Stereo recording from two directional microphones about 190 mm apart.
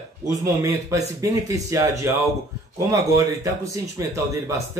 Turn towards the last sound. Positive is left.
turn(degrees=-15)  # may be behind; listen again after turning